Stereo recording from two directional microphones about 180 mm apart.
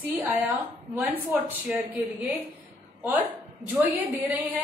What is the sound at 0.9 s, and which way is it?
Speech, 10° right (ahead or behind).